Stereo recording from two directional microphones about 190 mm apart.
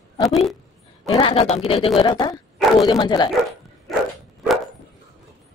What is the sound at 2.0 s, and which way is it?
Speech, 20° left (ahead or behind).